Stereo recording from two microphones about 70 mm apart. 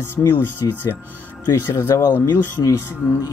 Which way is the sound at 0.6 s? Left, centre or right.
Left.